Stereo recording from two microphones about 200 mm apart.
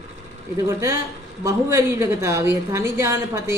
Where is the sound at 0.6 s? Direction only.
15° right (ahead or behind).